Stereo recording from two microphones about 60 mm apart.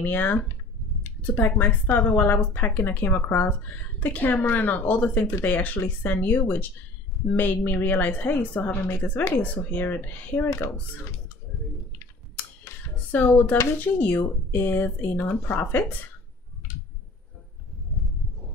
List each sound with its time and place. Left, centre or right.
0.0 s a woman's voice: left
12.7 s a sound: left
13.3 s speech: left